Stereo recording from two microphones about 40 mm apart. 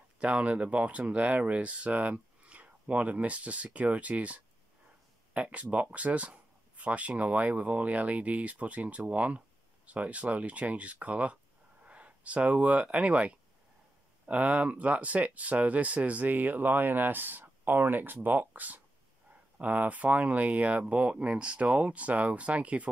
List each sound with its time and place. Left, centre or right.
0.2 s speech: right